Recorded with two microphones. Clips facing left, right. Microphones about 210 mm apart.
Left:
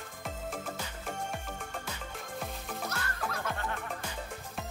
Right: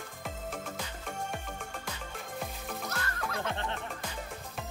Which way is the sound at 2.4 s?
Centre (ahead or behind).